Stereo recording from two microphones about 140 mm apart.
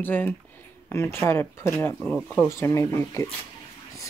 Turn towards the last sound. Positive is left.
turn(degrees=20)  # may be behind; listen again after turning